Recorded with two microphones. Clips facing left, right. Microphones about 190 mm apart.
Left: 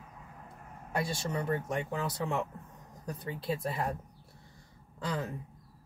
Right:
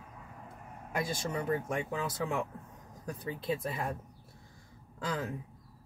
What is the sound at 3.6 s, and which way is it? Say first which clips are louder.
Speech: left 2 dB; 35° left (ahead or behind).